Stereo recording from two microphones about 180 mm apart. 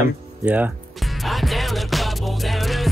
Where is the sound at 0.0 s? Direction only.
10° right (ahead or behind).